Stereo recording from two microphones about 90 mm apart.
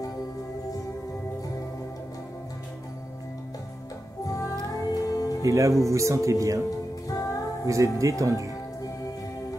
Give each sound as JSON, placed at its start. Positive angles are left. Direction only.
{"t": 4.2, "sound": "music", "side_deg": 40}
{"t": 5.4, "sound": "speech", "side_deg": -35}
{"t": 7.1, "sound": "music", "side_deg": 40}
{"t": 7.6, "sound": "speech", "side_deg": -35}